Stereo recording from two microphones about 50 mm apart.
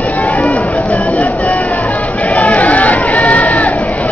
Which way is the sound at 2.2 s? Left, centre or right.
Left.